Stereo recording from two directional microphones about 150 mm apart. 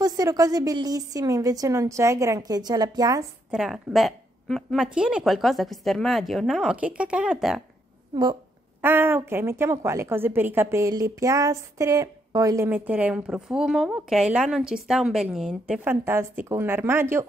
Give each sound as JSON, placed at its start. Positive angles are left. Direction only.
{"t": 0.0, "sound": "a woman's voice", "side_deg": -25}
{"t": 3.5, "sound": "a woman's voice", "side_deg": -5}
{"t": 8.1, "sound": "speech", "side_deg": -30}
{"t": 8.8, "sound": "a woman's voice", "side_deg": -15}